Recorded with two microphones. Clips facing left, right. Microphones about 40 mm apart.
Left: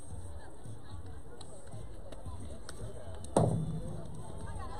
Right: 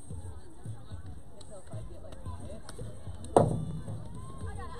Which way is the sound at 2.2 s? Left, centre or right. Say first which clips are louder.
Right 4 dB; right.